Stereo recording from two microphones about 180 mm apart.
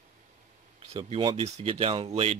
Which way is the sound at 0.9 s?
30° right (ahead or behind).